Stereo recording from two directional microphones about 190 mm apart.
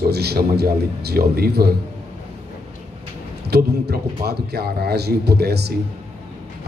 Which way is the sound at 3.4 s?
60° right (ahead or behind).